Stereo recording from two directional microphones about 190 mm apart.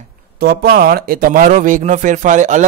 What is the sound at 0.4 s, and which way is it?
A man's voice, 55° right (ahead or behind).